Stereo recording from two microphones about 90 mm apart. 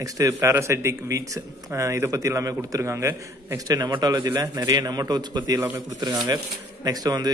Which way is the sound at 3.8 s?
50° right (ahead or behind).